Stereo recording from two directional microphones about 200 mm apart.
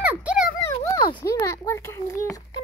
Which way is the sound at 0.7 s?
15° left (ahead or behind).